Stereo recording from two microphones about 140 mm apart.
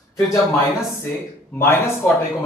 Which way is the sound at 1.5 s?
15° left (ahead or behind).